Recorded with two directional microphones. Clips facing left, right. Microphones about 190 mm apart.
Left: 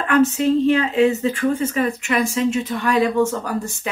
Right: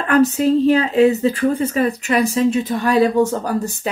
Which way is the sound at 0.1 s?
35° right (ahead or behind).